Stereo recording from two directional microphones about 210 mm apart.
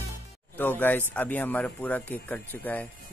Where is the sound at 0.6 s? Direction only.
10° left (ahead or behind).